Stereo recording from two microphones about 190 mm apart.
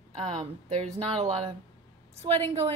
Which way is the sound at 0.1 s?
30° right (ahead or behind).